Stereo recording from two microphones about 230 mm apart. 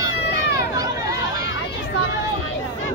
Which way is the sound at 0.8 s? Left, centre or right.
Centre.